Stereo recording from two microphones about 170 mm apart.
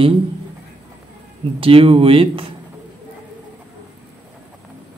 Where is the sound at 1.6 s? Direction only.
35° right (ahead or behind).